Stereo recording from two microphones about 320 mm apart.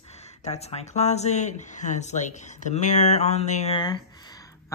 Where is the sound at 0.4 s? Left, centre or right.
Centre.